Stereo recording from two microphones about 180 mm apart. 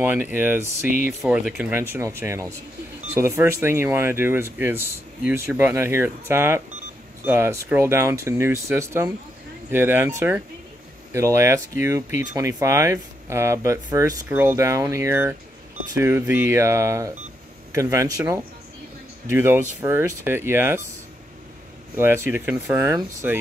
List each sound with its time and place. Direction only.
0.0 s speech: 10° right (ahead or behind)
21.9 s speech: 15° right (ahead or behind)